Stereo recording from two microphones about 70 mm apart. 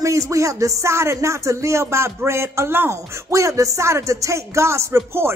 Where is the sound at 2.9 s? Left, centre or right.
Right.